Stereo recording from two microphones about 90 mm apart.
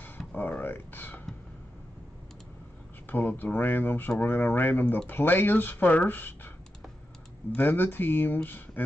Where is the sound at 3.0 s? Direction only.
20° left (ahead or behind).